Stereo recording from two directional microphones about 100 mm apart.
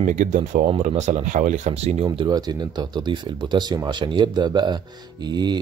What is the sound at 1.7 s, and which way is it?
Speech, 90° right.